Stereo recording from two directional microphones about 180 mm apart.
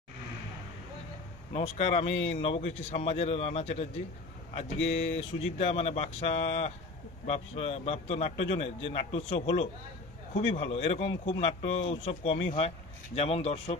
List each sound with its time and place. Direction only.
1.5 s speech: 30° left (ahead or behind)
4.9 s speech: 90° left
5.6 s speech: 35° left (ahead or behind)